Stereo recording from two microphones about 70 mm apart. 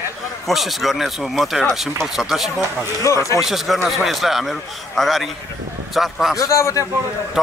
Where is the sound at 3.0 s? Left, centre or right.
Left.